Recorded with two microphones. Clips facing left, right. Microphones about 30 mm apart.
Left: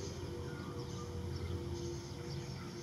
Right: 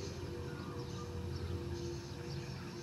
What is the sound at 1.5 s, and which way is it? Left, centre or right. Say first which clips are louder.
Music: even; centre.